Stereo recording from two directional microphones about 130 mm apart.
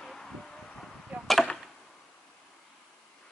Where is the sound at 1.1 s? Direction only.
Centre (ahead or behind).